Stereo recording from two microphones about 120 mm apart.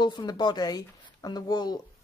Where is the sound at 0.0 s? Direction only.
35° left (ahead or behind).